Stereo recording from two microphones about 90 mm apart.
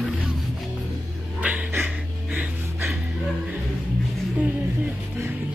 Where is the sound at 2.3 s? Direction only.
30° right (ahead or behind).